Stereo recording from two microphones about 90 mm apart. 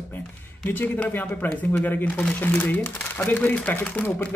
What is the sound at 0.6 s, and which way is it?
Speech, 20° left (ahead or behind).